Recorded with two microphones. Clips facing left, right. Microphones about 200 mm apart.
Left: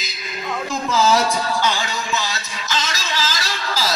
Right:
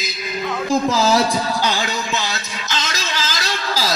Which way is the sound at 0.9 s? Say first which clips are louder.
Right 1 dB; 35° right (ahead or behind).